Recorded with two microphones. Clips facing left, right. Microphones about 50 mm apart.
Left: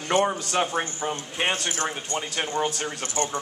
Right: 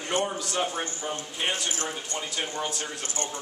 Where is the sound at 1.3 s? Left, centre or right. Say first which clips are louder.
Left 4 dB; left.